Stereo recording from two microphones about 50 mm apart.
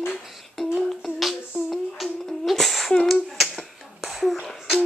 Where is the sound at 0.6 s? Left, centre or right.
Centre.